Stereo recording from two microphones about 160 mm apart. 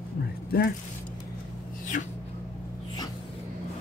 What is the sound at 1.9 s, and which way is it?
Speech, 55° left (ahead or behind).